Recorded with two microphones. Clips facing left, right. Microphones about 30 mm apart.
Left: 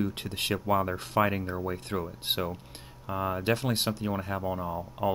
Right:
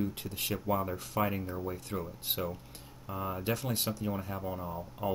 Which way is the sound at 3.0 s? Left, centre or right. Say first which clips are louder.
Left 6 dB; left.